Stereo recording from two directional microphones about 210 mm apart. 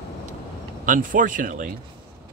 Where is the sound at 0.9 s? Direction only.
40° right (ahead or behind).